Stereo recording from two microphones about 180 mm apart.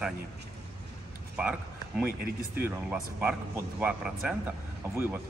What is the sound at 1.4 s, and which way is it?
A man's voice, 5° right (ahead or behind).